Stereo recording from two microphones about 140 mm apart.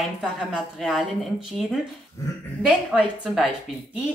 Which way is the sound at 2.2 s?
25° left (ahead or behind).